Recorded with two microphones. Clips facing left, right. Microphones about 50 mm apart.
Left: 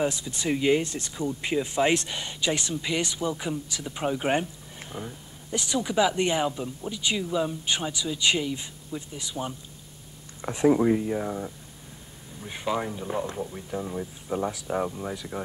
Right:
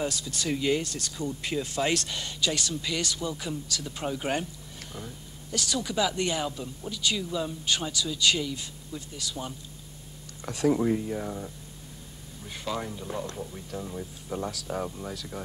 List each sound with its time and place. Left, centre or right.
0.0 s speech: left